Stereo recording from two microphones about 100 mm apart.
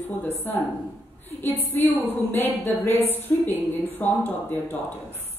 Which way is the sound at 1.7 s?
20° left (ahead or behind).